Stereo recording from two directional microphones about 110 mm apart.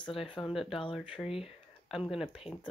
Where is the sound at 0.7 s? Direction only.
50° left (ahead or behind).